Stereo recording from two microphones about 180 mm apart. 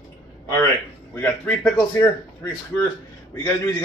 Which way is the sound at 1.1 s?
10° left (ahead or behind).